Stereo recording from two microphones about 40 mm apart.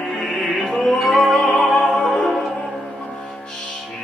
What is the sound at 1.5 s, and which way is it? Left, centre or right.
Music, left.